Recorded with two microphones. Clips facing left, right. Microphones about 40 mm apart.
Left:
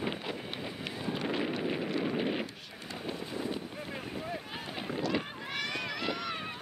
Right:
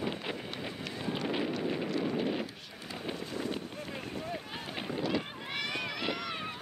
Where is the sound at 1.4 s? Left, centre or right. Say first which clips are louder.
Even; centre.